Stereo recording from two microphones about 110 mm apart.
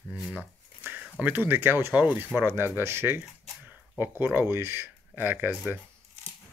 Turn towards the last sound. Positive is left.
turn(degrees=-15)  # may be behind; listen again after turning